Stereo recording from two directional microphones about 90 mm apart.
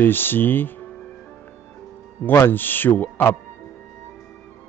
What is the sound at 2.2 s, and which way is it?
Speech, 25° left (ahead or behind).